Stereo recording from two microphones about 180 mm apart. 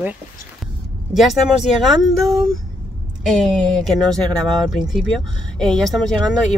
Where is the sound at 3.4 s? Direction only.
Centre (ahead or behind).